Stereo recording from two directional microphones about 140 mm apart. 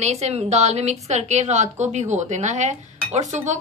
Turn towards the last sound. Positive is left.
turn(degrees=-60)  # may be behind; listen again after turning